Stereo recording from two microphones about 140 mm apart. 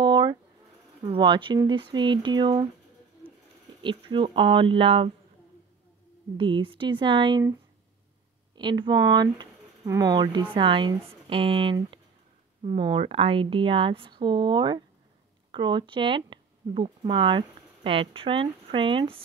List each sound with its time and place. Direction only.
0.0 s a sound: 30° right (ahead or behind)
1.0 s speech: 35° right (ahead or behind)
3.8 s speech: 35° right (ahead or behind)
6.3 s speech: 35° right (ahead or behind)
8.5 s speech: 35° right (ahead or behind)
10.5 s speech: 35° right (ahead or behind)